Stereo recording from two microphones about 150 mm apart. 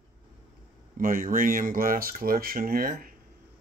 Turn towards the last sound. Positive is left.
turn(degrees=-75)  # may be behind; listen again after turning